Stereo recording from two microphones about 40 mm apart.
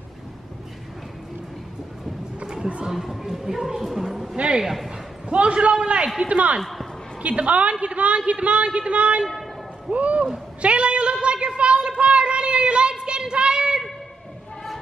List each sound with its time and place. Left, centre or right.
2.4 s a sound: right
2.9 s speech: centre
5.3 s a man's voice: right
6.6 s speech: centre
7.2 s a man's voice: right
10.6 s a sound: right